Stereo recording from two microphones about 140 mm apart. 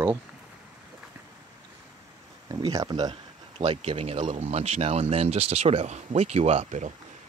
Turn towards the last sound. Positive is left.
turn(degrees=-55)  # may be behind; listen again after turning